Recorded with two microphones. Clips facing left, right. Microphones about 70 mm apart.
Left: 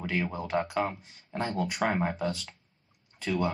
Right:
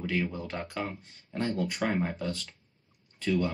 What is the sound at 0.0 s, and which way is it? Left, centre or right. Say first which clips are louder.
Speech: even; centre.